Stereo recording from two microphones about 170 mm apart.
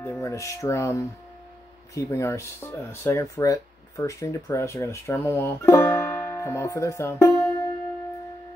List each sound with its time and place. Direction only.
0.0 s speech: 15° left (ahead or behind)